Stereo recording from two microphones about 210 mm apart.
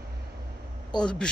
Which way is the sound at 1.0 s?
5° left (ahead or behind).